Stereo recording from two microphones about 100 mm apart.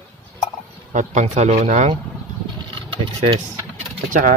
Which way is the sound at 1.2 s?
90° right.